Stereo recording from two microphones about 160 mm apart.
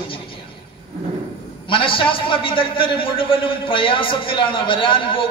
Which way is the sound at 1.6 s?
35° left (ahead or behind).